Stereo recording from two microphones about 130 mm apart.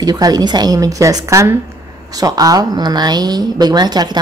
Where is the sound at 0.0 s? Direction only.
30° right (ahead or behind).